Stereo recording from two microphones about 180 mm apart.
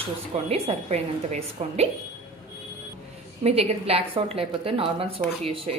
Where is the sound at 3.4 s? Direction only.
35° right (ahead or behind).